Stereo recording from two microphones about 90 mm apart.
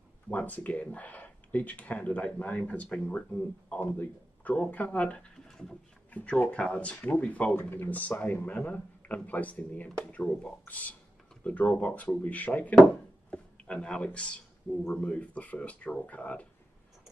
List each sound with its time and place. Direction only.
0.3 s speech: 15° left (ahead or behind)
6.1 s speech: 15° left (ahead or behind)